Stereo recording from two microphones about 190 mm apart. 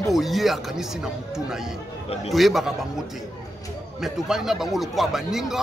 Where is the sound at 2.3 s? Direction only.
Centre (ahead or behind).